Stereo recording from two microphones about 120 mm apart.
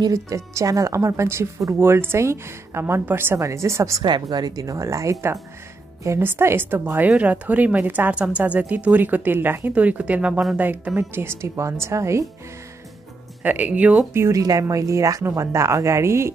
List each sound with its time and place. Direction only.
0.0 s speech: 25° right (ahead or behind)
4.0 s speech: 35° right (ahead or behind)
13.4 s speech: 15° right (ahead or behind)
14.2 s speech: 30° right (ahead or behind)